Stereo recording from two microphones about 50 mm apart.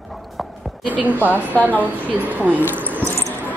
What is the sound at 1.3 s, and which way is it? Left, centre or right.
Speech, left.